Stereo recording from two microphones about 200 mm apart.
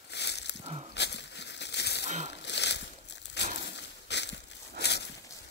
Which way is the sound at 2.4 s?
60° left (ahead or behind).